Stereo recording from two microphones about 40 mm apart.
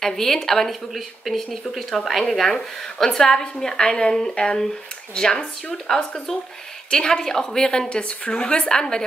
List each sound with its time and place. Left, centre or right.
0.0 s a woman's voice: centre